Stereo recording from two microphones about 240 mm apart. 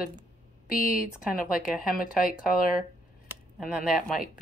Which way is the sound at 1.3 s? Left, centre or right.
Left.